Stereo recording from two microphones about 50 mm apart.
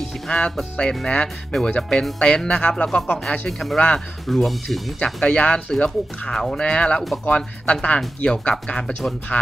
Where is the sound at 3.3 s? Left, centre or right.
Left.